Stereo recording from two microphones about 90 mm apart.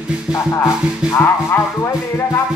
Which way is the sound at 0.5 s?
35° left (ahead or behind).